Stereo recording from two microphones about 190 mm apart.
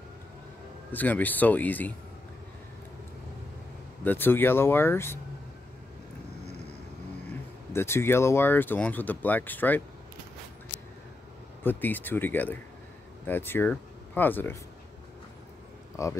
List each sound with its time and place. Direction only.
0.9 s speech: 10° left (ahead or behind)
4.0 s speech: 10° left (ahead or behind)
7.7 s speech: 15° left (ahead or behind)
11.6 s speech: 10° left (ahead or behind)
16.0 s speech: 15° left (ahead or behind)